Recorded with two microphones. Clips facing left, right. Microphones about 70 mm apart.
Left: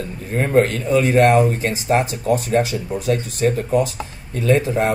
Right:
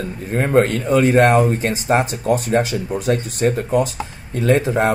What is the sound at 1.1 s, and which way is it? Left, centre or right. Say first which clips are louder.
Speech: even; right.